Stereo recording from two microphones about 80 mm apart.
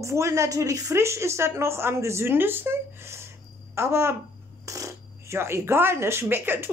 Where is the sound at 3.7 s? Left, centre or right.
Right.